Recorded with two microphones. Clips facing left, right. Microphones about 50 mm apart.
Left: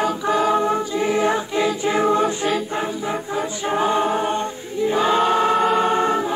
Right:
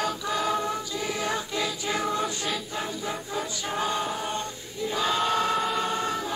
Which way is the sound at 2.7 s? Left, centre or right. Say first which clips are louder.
Left 8 dB; left.